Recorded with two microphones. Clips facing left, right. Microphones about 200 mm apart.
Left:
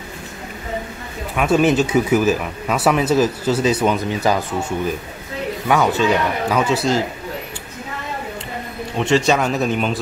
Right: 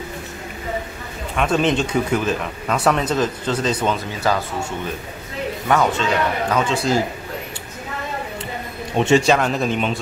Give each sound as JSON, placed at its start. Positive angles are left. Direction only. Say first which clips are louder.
{"t": 1.3, "sound": "speech", "louder": "left 3 dB", "side_deg": 5}
{"t": 5.7, "sound": "speech", "louder": "left 2 dB", "side_deg": 5}
{"t": 8.9, "sound": "a man's voice", "louder": "right 2 dB", "side_deg": -20}
{"t": 9.2, "sound": "speech", "louder": "even", "side_deg": 0}